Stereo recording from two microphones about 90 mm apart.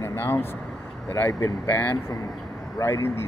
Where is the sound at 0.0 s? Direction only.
25° left (ahead or behind).